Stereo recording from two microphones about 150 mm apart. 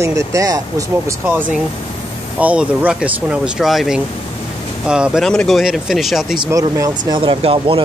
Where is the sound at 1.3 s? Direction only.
10° right (ahead or behind).